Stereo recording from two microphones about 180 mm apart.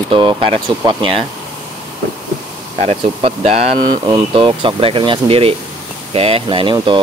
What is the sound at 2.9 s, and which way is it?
Speech, 35° right (ahead or behind).